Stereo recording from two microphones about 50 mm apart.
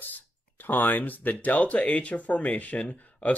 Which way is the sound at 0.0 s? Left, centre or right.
Left.